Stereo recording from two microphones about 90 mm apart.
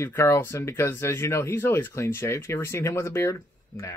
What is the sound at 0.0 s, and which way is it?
Speech, 30° left (ahead or behind).